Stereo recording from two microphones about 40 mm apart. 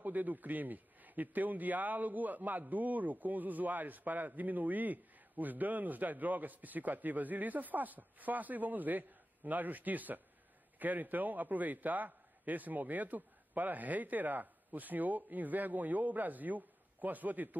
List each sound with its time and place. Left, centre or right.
0.0 s speech: right